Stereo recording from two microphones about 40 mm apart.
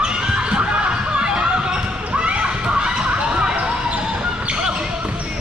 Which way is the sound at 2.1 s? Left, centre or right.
Right.